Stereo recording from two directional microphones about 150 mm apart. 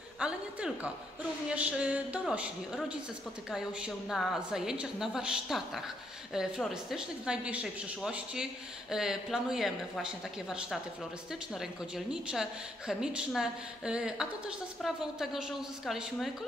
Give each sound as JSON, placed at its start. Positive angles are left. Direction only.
{"t": 0.2, "sound": "a woman's voice", "side_deg": -5}